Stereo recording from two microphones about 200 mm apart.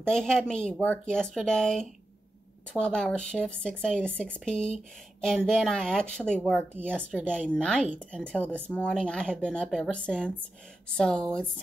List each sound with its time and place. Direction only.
0.0 s speech: 5° left (ahead or behind)